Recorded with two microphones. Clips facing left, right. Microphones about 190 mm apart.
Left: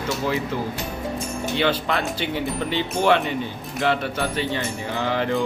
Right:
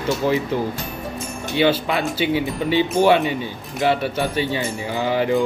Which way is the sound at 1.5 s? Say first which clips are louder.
Right 5 dB; 10° right (ahead or behind).